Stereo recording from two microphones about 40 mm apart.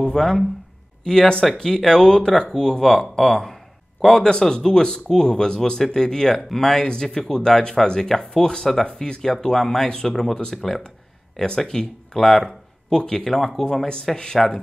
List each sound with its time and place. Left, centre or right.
0.0 s speech: centre